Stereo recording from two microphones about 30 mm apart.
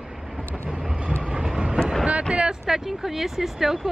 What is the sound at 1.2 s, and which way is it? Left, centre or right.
Train, right.